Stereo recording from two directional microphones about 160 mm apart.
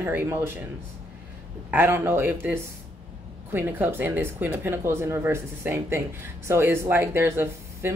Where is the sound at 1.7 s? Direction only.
15° right (ahead or behind).